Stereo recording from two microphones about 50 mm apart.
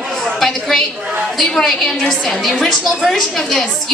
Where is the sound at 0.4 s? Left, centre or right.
Centre.